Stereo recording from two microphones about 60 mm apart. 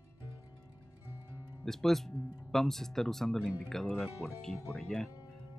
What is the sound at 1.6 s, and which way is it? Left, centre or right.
Speech, centre.